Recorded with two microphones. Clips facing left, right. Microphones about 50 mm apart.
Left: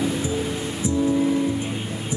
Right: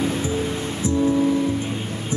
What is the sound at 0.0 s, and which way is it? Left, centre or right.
Music, right.